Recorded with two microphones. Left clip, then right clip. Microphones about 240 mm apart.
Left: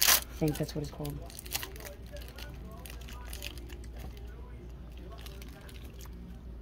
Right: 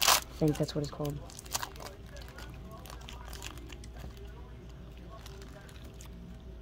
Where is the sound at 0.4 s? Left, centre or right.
Right.